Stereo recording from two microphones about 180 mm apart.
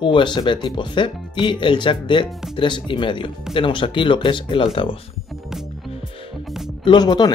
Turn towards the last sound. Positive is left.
turn(degrees=25)  # may be behind; listen again after turning